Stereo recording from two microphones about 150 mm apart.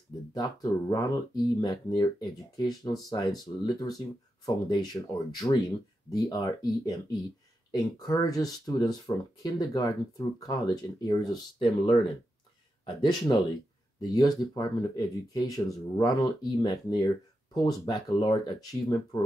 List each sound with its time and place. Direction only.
0.3 s speech: 25° left (ahead or behind)
11.6 s speech: 35° left (ahead or behind)